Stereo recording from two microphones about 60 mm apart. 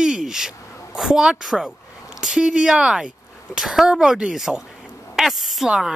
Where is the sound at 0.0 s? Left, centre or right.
Centre.